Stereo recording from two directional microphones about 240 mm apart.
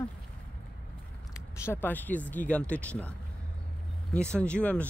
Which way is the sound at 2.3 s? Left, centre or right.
Centre.